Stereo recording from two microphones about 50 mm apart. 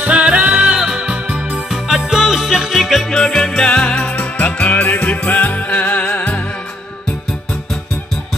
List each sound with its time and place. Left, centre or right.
0.0 s music: right
1.7 s music: centre
3.1 s music: centre
4.1 s music: left